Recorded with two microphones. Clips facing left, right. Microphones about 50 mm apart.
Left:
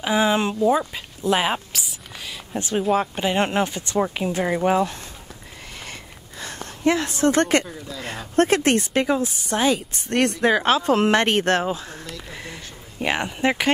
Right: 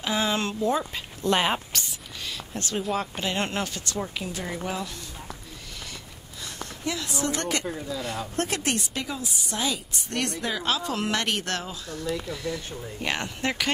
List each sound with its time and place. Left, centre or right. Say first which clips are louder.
0.0 s speech: left 6 dB; centre
0.9 s a sound: left 3 dB; centre
3.2 s speech: left 7 dB; left
4.0 s speech: left 11 dB; left
6.4 s speech: left 10 dB; left
7.6 s a woman's voice: right 3 dB; centre
8.4 s speech: left 11 dB; left
13.0 s speech: left 7 dB; centre